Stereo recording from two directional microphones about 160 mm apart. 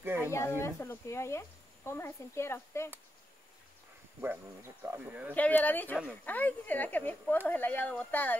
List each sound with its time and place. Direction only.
0.0 s speech: 15° right (ahead or behind)
0.6 s speech: 15° left (ahead or behind)
4.2 s speech: 15° right (ahead or behind)
5.3 s speech: 10° left (ahead or behind)